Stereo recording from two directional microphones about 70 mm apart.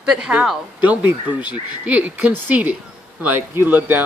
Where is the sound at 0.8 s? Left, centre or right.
Right.